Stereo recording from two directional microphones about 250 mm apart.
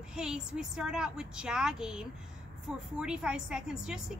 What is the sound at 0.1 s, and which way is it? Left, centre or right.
A woman's voice, centre.